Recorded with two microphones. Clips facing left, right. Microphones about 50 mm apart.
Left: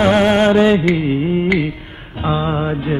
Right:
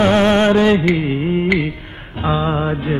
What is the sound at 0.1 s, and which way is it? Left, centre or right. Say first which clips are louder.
Music: left 1 dB; left.